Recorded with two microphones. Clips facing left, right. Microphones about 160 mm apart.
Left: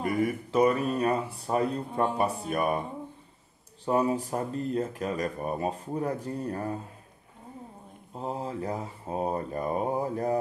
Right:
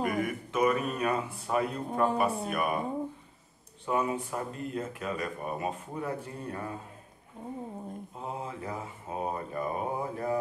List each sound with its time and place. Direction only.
0.0 s speech: 30° left (ahead or behind)
3.8 s speech: 35° left (ahead or behind)
8.2 s speech: 35° left (ahead or behind)